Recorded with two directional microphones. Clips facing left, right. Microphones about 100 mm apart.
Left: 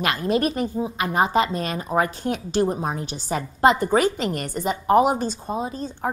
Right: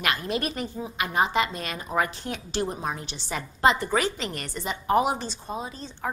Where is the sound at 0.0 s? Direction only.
30° left (ahead or behind).